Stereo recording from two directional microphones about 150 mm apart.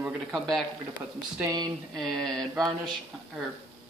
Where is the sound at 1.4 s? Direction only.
25° right (ahead or behind).